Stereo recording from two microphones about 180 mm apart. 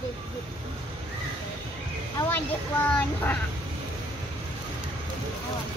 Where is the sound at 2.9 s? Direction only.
10° left (ahead or behind).